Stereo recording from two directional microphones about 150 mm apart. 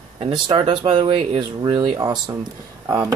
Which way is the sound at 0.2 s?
30° right (ahead or behind).